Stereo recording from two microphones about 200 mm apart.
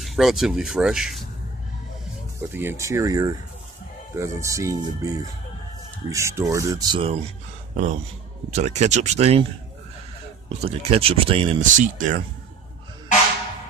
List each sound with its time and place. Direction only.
0.0 s speech: centre (ahead or behind)
2.5 s speech: 10° right (ahead or behind)
7.7 s a man's voice: 35° right (ahead or behind)
10.6 s speech: 30° right (ahead or behind)